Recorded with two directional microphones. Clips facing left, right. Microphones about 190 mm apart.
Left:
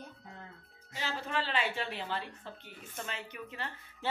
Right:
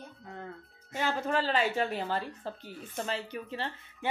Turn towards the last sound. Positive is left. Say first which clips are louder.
# right 6 dB
turn(degrees=-30)  # may be behind; listen again after turning